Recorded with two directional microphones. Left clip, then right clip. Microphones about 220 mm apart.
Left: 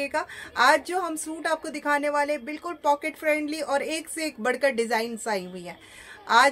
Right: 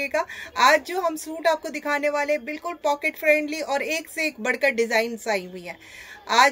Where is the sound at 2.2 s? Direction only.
15° left (ahead or behind).